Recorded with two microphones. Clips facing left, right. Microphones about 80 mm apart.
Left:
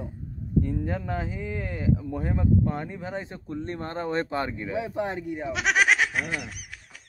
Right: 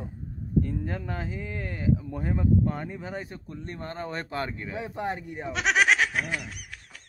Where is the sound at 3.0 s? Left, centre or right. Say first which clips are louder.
Left 2 dB; left.